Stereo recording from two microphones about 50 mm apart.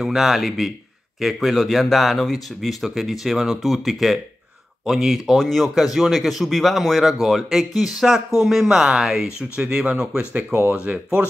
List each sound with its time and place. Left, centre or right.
0.0 s speech: centre
10.5 s speech: right
10.8 s speech: right